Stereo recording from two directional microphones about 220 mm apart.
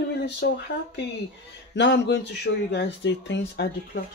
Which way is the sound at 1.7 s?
50° left (ahead or behind).